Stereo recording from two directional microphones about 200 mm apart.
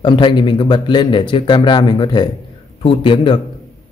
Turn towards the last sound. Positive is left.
turn(degrees=25)  # may be behind; listen again after turning